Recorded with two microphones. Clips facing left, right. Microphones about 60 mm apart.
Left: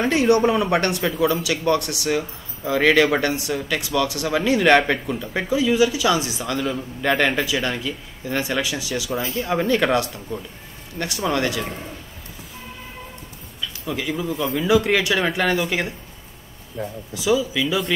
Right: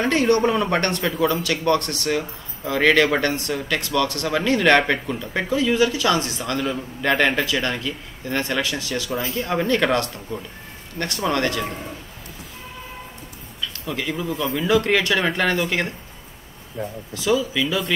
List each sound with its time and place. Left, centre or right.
0.0 s speech: centre
6.6 s speech: centre
7.4 s speech: centre
9.1 s speech: centre
13.8 s speech: centre
15.1 s speech: centre
16.8 s speech: right
17.1 s speech: centre